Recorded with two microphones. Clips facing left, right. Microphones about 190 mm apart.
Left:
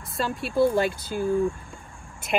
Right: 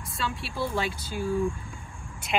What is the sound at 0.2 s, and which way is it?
Speech, 50° left (ahead or behind).